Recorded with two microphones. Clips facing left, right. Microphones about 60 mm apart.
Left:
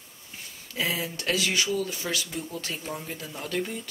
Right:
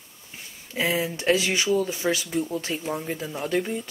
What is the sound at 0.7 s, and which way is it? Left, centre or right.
Speech, right.